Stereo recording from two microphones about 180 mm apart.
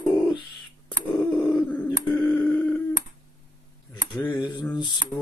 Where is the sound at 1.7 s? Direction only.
10° left (ahead or behind).